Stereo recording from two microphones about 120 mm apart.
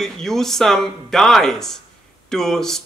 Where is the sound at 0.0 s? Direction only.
5° left (ahead or behind).